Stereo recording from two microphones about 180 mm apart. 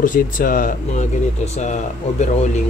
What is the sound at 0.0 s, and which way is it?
Speech, 45° left (ahead or behind).